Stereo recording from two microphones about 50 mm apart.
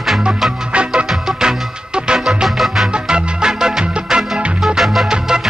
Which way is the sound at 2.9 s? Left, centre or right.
Centre.